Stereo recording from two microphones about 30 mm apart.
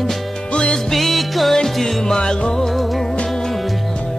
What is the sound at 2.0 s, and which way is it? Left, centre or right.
Music, centre.